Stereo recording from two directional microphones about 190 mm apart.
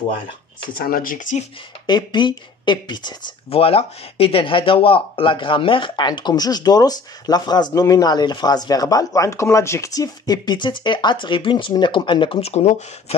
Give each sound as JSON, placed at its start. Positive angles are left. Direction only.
{"t": 0.7, "sound": "speech", "side_deg": 50}
{"t": 1.9, "sound": "speech", "side_deg": 25}